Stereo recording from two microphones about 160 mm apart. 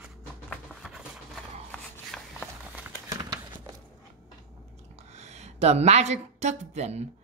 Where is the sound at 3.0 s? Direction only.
25° right (ahead or behind).